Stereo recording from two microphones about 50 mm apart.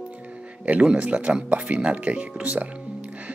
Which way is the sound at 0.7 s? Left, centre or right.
Right.